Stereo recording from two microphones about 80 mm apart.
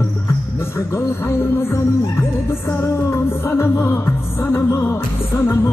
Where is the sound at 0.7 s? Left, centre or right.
Left.